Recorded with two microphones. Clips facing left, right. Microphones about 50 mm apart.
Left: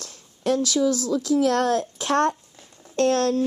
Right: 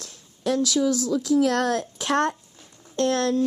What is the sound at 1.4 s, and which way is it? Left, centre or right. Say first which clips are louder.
Speech: left 2 dB; right.